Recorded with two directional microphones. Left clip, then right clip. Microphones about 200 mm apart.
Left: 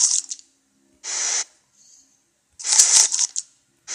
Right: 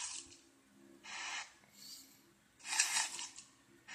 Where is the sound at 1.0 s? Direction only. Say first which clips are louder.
Left 18 dB; 35° left (ahead or behind).